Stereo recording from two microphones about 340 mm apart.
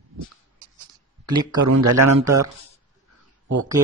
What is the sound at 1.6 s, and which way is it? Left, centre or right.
Speech, right.